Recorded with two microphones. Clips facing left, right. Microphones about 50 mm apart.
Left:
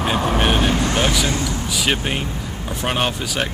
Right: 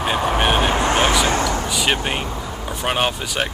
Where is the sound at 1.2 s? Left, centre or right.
Right.